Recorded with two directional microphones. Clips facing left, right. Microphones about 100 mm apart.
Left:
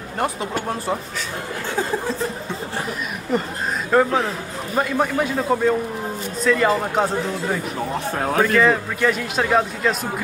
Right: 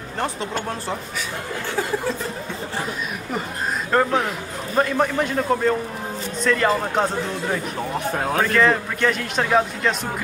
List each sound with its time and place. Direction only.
3.9 s a man's voice: 5° left (ahead or behind)
8.5 s a man's voice: 5° left (ahead or behind)